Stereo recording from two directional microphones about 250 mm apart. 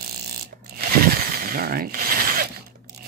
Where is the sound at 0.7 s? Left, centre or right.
Right.